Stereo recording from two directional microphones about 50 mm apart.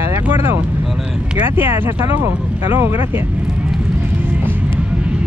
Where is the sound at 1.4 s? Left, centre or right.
Right.